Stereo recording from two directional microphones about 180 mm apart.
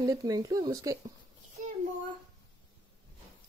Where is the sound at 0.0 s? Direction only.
20° right (ahead or behind).